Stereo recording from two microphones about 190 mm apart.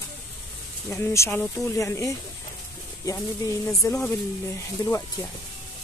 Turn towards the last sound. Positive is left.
turn(degrees=15)  # may be behind; listen again after turning